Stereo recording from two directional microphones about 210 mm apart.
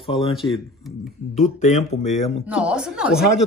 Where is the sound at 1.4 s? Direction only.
35° left (ahead or behind).